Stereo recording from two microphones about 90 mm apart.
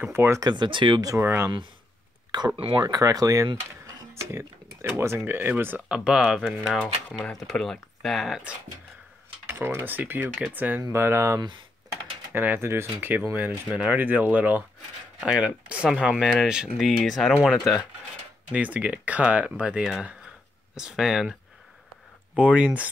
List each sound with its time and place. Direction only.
0.0 s speech: 25° right (ahead or behind)
0.4 s speech: 55° right (ahead or behind)
1.2 s speech: 25° right (ahead or behind)
2.5 s speech: 80° right
2.8 s speech: 40° right (ahead or behind); by 5.8 s 20° right (ahead or behind)
5.9 s speech: 10° right (ahead or behind)
7.2 s speech: 5° left (ahead or behind)
9.5 s speech: 25° right (ahead or behind)
10.8 s speech: 30° right (ahead or behind)
12.3 s speech: 20° right (ahead or behind); by 17.7 s centre (ahead or behind)
18.5 s speech: 15° right (ahead or behind)